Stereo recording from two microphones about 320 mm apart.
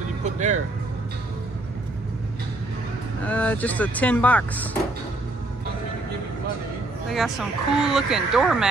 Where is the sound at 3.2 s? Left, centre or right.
Centre.